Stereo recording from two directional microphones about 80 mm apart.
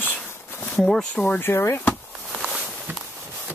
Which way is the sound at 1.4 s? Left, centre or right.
Left.